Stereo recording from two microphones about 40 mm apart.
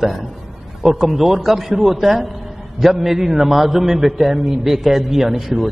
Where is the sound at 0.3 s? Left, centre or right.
Centre.